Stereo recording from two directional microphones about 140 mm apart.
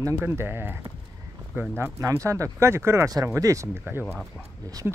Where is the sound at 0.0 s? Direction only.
15° right (ahead or behind).